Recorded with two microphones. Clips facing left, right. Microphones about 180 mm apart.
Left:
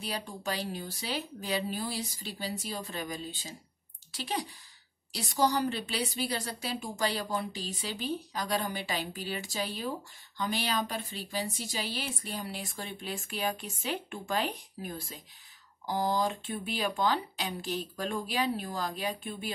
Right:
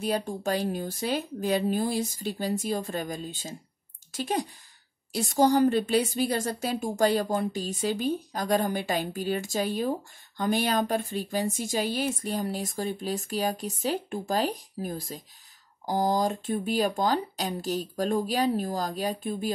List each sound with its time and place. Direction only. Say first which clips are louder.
0.0 s a woman's voice: right 8 dB; 50° right (ahead or behind)